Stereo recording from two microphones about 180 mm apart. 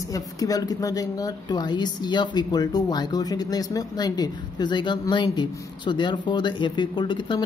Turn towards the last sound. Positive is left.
turn(degrees=25)  # may be behind; listen again after turning